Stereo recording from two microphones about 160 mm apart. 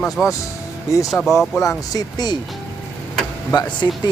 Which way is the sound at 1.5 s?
20° left (ahead or behind).